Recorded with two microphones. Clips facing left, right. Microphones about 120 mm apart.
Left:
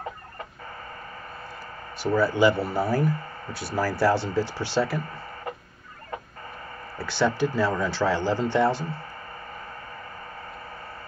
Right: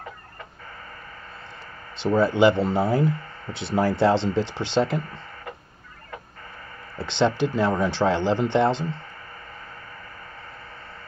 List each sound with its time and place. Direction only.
2.0 s speech: 20° right (ahead or behind)
7.0 s speech: 20° right (ahead or behind)